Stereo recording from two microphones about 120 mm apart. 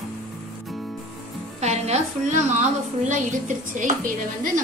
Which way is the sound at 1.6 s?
65° right (ahead or behind).